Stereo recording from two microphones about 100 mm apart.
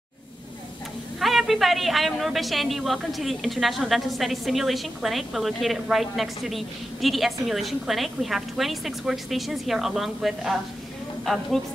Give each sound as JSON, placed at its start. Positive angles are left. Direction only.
{"t": 1.2, "sound": "a woman's voice", "side_deg": 0}